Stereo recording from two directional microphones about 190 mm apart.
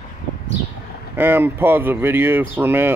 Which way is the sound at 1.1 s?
10° right (ahead or behind).